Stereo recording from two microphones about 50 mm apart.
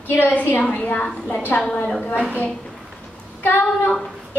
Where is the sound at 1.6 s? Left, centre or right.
Left.